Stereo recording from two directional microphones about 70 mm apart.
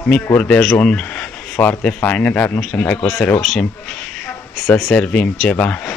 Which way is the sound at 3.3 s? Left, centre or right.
Centre.